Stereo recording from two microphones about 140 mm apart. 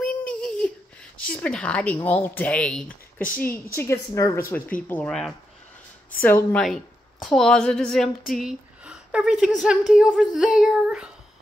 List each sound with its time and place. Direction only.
0.0 s a sound: 5° left (ahead or behind)
1.3 s speech: 10° left (ahead or behind)
3.2 s a woman's voice: 80° left
3.4 s speech: 15° left (ahead or behind)
6.2 s a woman's voice: 15° left (ahead or behind)
8.3 s a sound: 5° right (ahead or behind)
9.9 s a woman's voice: centre (ahead or behind)